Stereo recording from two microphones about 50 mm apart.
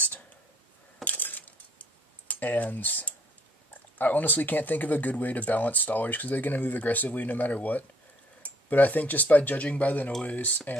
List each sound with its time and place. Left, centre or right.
1.0 s keys jangling: left
3.7 s speech: left